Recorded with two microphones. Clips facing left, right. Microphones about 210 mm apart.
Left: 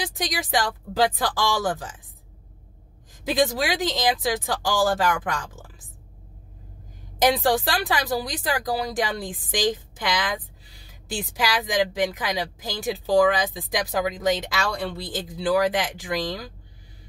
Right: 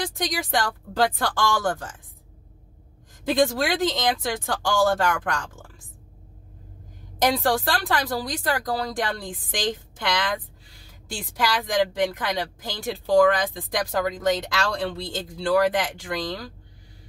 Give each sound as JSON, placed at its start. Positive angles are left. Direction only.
{"t": 0.1, "sound": "a woman's voice", "side_deg": 5}
{"t": 3.3, "sound": "a woman's voice", "side_deg": 5}
{"t": 7.2, "sound": "a woman's voice", "side_deg": 10}
{"t": 11.3, "sound": "a woman's voice", "side_deg": 5}